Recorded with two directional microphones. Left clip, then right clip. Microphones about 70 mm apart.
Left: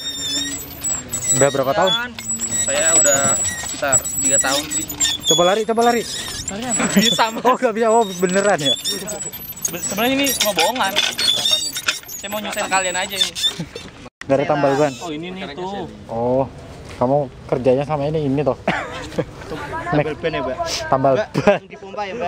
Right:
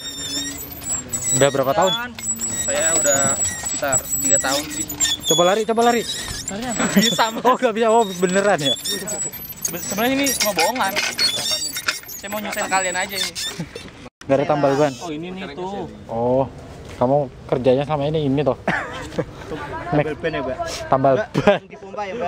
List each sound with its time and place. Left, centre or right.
0.2 s a sound: centre
1.2 s speech: centre
9.8 s speech: centre
10.1 s speech: centre
15.4 s speech: centre
16.1 s speech: centre
18.7 s a sound: centre
19.1 s speech: left
20.9 s speech: centre